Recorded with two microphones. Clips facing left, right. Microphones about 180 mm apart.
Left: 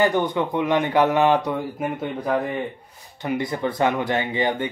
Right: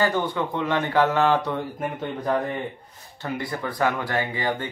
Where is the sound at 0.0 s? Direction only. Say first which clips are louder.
Left 3 dB; 20° left (ahead or behind).